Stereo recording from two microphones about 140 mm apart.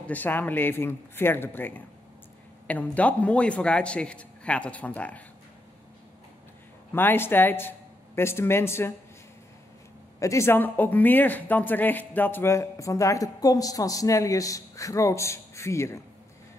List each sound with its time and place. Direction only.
0.0 s a man's voice: 10° left (ahead or behind)
6.9 s a man's voice: 15° left (ahead or behind)
10.1 s speech: 20° left (ahead or behind)